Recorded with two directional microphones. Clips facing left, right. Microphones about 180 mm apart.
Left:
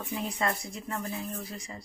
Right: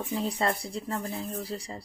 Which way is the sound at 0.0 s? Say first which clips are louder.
Right 3 dB; 35° right (ahead or behind).